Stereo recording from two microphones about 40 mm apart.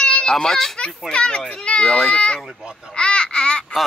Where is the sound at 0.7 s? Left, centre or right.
Left.